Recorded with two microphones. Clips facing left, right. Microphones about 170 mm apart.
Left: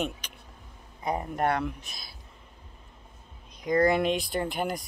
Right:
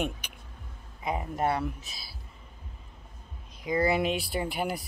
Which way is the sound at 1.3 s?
5° right (ahead or behind).